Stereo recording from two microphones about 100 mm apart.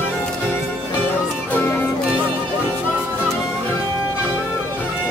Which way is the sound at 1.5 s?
20° left (ahead or behind).